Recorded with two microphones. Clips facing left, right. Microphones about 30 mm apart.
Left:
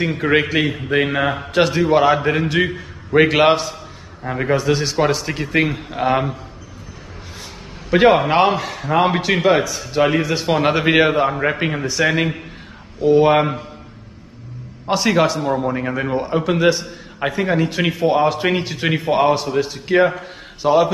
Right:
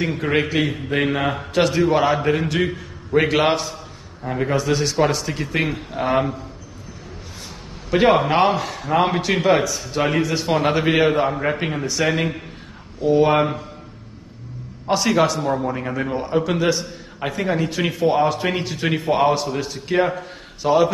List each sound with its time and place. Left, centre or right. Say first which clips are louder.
0.0 s a man's voice: left 3 dB; centre
7.9 s a man's voice: left 3 dB; centre
14.9 s a man's voice: left 1 dB; centre